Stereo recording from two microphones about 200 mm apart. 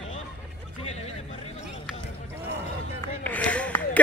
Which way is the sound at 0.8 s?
30° left (ahead or behind).